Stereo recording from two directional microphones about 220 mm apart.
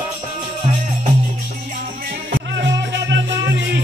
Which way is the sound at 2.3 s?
50° right (ahead or behind).